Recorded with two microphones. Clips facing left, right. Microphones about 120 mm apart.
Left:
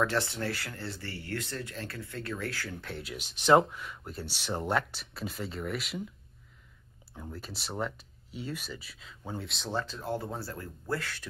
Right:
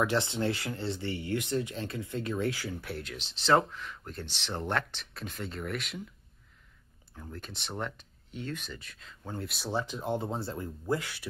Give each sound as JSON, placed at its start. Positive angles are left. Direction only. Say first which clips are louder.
{"t": 0.0, "sound": "speech", "louder": "right 1 dB", "side_deg": -20}
{"t": 3.0, "sound": "speech", "louder": "even", "side_deg": 10}
{"t": 7.2, "sound": "speech", "louder": "left 1 dB", "side_deg": 5}
{"t": 9.4, "sound": "speech", "louder": "right 2 dB", "side_deg": -5}